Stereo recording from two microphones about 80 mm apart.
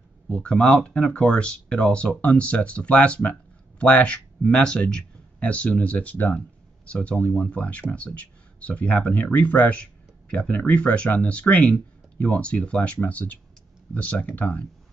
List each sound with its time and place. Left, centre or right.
0.3 s speech: centre